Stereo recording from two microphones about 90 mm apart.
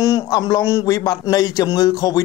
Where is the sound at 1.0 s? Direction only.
45° left (ahead or behind).